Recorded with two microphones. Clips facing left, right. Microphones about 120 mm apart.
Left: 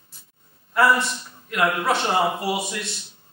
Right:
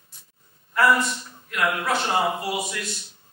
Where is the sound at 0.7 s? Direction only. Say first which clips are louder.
Left 1 dB; 25° left (ahead or behind).